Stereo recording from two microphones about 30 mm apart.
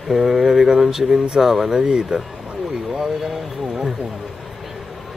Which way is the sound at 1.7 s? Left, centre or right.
Right.